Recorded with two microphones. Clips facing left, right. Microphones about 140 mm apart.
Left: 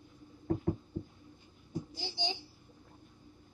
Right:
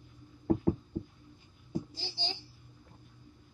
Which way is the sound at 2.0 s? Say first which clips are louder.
Left 3 dB; 15° left (ahead or behind).